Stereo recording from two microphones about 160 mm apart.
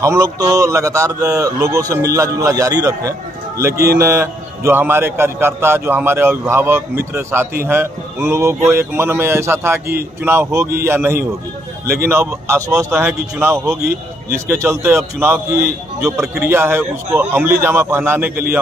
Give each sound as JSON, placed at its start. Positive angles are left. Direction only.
{"t": 0.0, "sound": "a man's voice", "side_deg": -20}
{"t": 12.4, "sound": "a man's voice", "side_deg": -20}